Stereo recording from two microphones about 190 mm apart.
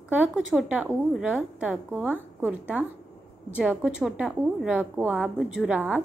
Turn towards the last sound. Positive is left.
turn(degrees=-5)  # may be behind; listen again after turning